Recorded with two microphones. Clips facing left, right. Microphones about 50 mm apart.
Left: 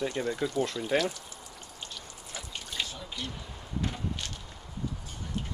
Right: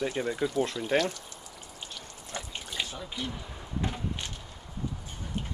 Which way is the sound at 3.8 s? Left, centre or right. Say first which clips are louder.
Right 1 dB; centre.